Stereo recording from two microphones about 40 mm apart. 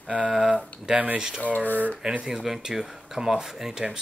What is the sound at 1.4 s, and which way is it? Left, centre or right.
Speech, left.